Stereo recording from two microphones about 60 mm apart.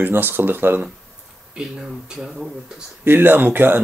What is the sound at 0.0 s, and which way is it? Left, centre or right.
Speech, right.